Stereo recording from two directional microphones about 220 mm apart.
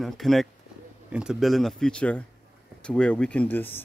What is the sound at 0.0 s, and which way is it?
Speech, centre (ahead or behind).